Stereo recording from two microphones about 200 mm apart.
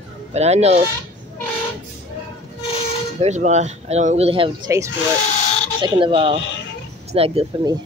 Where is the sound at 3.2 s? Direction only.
35° right (ahead or behind).